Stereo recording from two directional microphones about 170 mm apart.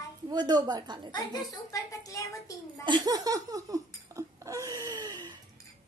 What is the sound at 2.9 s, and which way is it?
Laughter, 25° right (ahead or behind).